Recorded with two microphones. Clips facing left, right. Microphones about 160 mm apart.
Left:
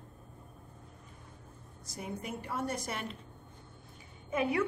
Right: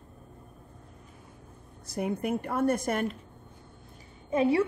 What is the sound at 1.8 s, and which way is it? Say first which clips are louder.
A woman's voice: right 10 dB; 60° right (ahead or behind).